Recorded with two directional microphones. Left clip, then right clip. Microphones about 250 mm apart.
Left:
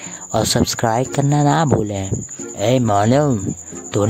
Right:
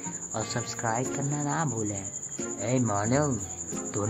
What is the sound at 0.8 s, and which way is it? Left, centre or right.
Speech, left.